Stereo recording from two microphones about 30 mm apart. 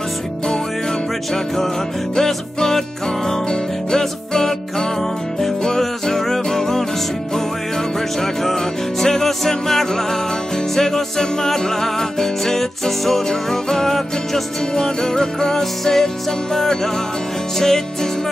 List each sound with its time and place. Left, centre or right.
2.1 s music: centre
3.9 s music: centre
8.2 s music: centre